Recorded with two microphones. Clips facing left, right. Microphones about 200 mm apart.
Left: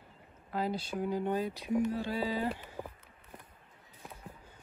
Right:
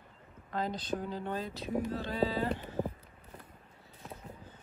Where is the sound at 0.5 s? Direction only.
10° left (ahead or behind).